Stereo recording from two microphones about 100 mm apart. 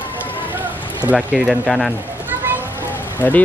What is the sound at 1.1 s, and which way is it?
Speech, centre (ahead or behind).